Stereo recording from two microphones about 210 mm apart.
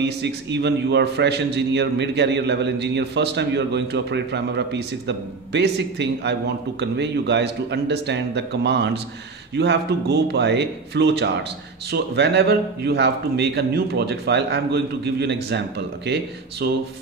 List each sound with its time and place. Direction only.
0.0 s a man's voice: 55° right (ahead or behind)